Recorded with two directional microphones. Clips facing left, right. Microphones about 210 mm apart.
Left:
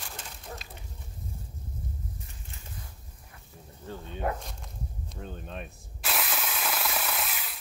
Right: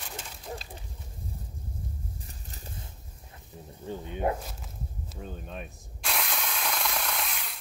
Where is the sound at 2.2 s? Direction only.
35° right (ahead or behind).